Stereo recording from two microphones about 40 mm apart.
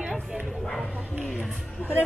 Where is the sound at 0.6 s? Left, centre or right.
Centre.